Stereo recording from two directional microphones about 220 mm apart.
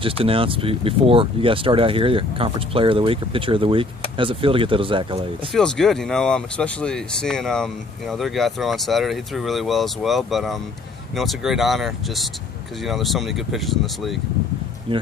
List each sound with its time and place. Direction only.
0.0 s speech: 25° right (ahead or behind)
5.5 s speech: 5° left (ahead or behind)